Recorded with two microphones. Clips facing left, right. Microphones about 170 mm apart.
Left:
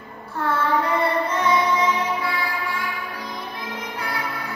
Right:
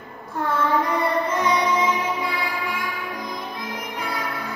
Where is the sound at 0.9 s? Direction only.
15° right (ahead or behind).